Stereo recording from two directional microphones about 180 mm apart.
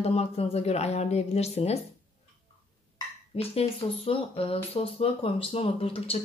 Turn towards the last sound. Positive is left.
turn(degrees=30)  # may be behind; listen again after turning